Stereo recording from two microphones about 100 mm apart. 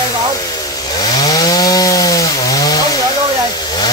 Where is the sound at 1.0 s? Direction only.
40° left (ahead or behind).